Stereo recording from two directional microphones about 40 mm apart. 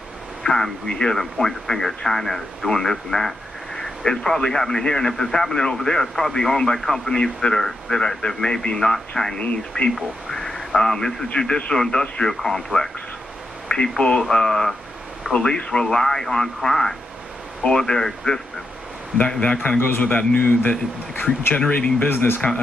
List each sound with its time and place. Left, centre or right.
0.4 s speech: centre
10.3 s radio: centre
11.3 s speech: left
13.7 s speech: left
19.1 s speech: left